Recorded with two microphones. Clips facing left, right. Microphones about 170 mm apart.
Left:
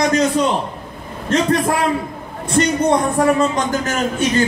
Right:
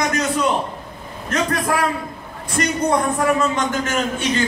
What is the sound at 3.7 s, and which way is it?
Speech, 40° left (ahead or behind).